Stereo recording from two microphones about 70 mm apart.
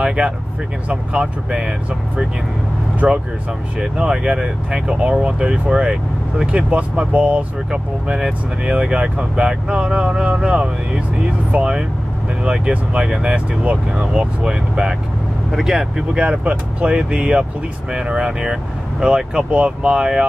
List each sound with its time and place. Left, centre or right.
0.0 s speech: centre
16.2 s speech: centre